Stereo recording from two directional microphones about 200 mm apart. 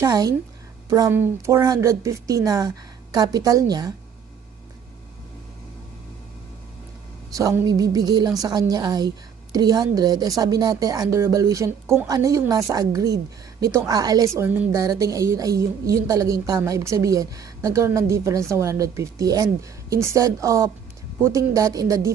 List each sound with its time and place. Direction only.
0.0 s a woman's voice: 15° right (ahead or behind)
7.3 s a woman's voice: 15° right (ahead or behind)